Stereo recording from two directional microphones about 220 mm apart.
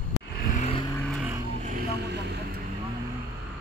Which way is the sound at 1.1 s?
5° right (ahead or behind).